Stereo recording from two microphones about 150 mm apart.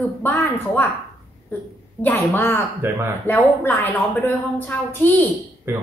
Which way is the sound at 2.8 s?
15° right (ahead or behind).